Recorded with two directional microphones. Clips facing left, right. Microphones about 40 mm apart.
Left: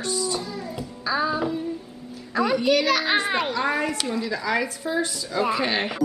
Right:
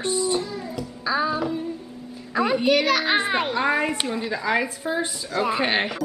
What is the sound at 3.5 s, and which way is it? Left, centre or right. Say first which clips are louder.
A woman's voice: right 2 dB; centre.